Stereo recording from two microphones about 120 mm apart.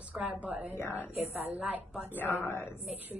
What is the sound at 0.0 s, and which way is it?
A woman's voice, 10° right (ahead or behind).